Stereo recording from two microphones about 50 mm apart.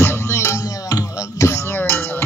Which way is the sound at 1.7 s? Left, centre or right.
Left.